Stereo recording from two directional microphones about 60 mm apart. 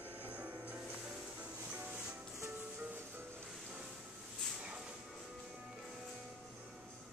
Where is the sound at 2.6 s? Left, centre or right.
Right.